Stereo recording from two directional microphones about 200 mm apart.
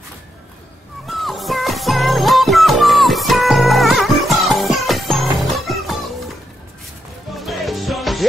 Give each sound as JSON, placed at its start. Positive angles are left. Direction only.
{"t": 1.0, "sound": "music", "side_deg": 0}
{"t": 7.3, "sound": "music", "side_deg": 0}